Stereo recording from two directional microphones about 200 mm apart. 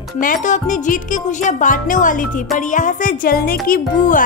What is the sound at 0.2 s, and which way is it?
Speech, 40° left (ahead or behind).